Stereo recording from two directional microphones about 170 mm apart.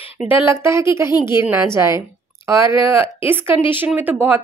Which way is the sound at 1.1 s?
25° left (ahead or behind).